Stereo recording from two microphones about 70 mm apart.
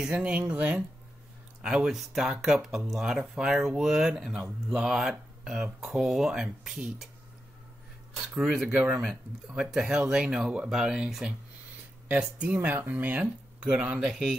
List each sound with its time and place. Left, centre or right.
0.0 s speech: centre
4.7 s speech: centre
8.4 s speech: centre
12.1 s speech: right